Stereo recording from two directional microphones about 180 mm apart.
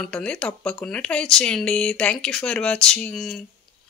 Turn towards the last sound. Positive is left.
turn(degrees=0)  # may be behind; listen again after turning